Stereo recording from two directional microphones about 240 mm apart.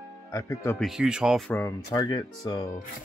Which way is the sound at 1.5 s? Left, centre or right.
Centre.